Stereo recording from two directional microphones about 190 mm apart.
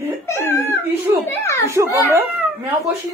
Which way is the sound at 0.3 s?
15° left (ahead or behind).